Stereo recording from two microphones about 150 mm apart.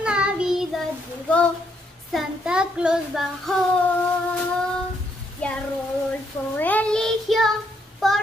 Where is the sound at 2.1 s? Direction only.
5° right (ahead or behind).